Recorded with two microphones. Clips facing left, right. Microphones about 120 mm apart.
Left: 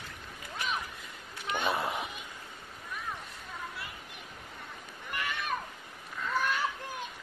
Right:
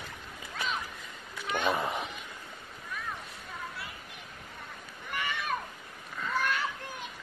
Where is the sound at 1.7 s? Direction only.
Centre (ahead or behind).